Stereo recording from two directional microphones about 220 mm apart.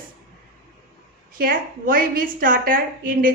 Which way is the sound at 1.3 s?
40° right (ahead or behind).